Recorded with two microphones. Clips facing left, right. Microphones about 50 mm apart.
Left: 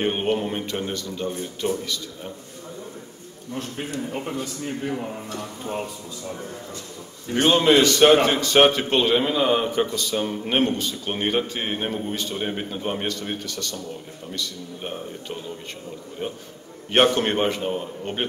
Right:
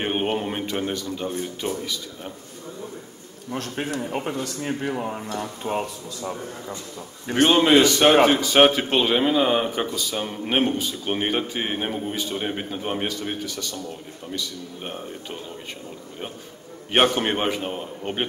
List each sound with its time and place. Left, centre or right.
0.0 s a man's voice: centre
3.5 s a man's voice: right
7.4 s a man's voice: centre
16.9 s a man's voice: centre